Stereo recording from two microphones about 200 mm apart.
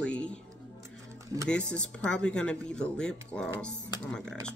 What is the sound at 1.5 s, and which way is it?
Speech, 5° left (ahead or behind).